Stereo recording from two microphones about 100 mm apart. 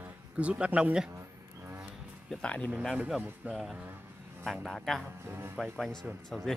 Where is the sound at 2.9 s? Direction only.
10° right (ahead or behind).